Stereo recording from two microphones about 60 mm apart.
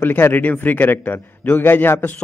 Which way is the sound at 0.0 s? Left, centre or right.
Left.